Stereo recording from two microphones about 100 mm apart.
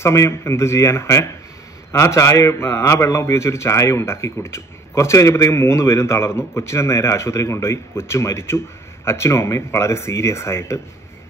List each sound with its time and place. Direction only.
0.0 s a man's voice: 30° left (ahead or behind)